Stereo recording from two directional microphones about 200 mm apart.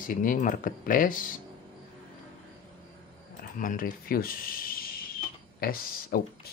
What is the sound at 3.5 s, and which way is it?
Speech, 45° left (ahead or behind).